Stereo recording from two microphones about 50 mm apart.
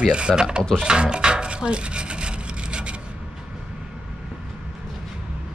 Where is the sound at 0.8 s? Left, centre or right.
Centre.